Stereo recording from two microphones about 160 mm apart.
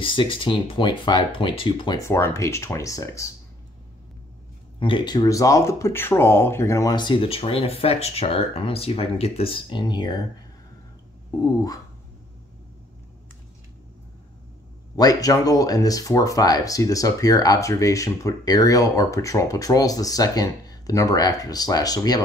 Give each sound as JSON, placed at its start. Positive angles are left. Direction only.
{"t": 0.0, "sound": "speech", "side_deg": 30}
{"t": 2.0, "sound": "speech", "side_deg": 15}
{"t": 4.7, "sound": "speech", "side_deg": 30}
{"t": 11.3, "sound": "speech", "side_deg": 25}
{"t": 15.0, "sound": "speech", "side_deg": 20}